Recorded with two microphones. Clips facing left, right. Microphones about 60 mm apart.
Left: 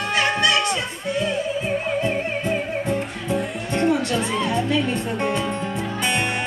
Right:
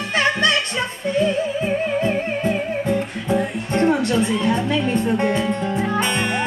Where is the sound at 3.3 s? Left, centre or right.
Right.